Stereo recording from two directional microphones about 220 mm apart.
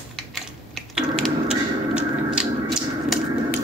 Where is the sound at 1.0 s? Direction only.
Centre (ahead or behind).